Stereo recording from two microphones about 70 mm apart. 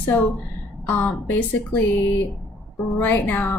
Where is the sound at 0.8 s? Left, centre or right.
Left.